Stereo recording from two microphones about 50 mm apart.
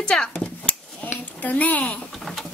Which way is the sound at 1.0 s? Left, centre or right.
Left.